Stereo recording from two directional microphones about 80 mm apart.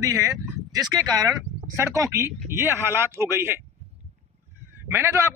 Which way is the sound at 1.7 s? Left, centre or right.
Right.